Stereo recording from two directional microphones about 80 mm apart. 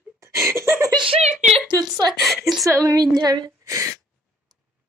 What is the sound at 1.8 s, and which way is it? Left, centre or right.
Speech, right.